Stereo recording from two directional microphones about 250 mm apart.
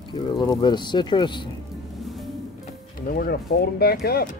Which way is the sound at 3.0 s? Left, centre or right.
Left.